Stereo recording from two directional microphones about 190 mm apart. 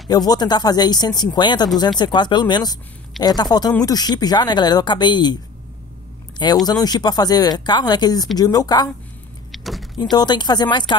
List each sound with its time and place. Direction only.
0.1 s speech: 20° left (ahead or behind)
9.5 s vehicle: centre (ahead or behind)
10.1 s speech: 25° left (ahead or behind)